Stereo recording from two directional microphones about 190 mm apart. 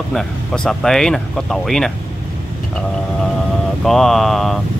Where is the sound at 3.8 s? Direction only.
Centre (ahead or behind).